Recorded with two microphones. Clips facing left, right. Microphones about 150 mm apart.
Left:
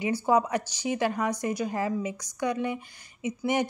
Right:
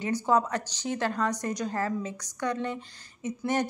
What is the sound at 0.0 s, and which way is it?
A woman's voice, 10° left (ahead or behind).